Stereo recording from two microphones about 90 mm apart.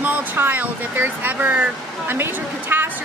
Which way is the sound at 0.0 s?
20° right (ahead or behind).